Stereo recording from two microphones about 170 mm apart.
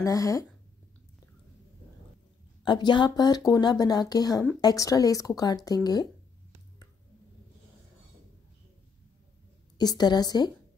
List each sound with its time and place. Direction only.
0.0 s speech: 20° left (ahead or behind)
2.6 s speech: 25° left (ahead or behind)
9.8 s speech: 25° left (ahead or behind)